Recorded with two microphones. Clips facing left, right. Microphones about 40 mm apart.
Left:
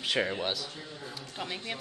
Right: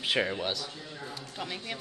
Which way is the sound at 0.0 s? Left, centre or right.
Centre.